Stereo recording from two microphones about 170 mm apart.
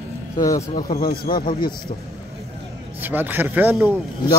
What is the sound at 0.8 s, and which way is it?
Speech, 60° left (ahead or behind).